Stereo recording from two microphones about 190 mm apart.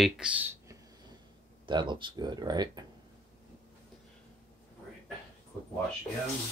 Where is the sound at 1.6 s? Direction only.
25° right (ahead or behind).